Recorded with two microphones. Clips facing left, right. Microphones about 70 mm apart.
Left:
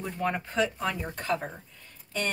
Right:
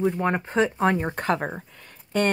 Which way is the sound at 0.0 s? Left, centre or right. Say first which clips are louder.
Right 7 dB; right.